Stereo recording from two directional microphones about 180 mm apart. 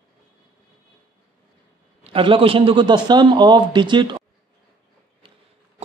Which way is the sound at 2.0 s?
30° right (ahead or behind).